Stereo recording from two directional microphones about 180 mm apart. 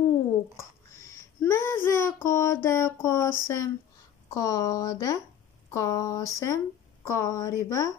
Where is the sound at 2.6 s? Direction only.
15° left (ahead or behind).